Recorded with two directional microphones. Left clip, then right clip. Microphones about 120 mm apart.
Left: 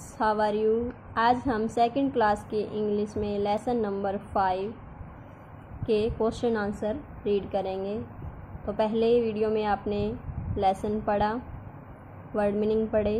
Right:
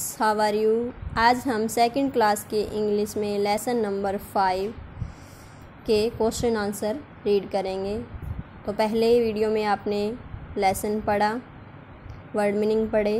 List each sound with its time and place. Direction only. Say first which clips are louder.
0.2 s a woman's voice: right 3 dB; 20° right (ahead or behind)
5.9 s a woman's voice: right 3 dB; 20° right (ahead or behind)
12.4 s a woman's voice: right 3 dB; 20° right (ahead or behind)